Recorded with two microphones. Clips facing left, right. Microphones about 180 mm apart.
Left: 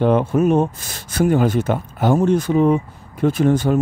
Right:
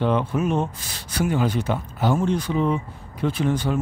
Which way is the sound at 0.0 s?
45° left (ahead or behind).